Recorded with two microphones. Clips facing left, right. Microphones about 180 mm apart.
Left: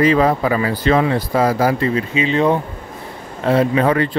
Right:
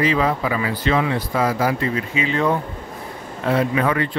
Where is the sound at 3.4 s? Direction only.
35° left (ahead or behind).